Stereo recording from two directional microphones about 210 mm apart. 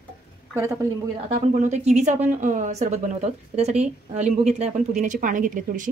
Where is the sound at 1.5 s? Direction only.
35° right (ahead or behind).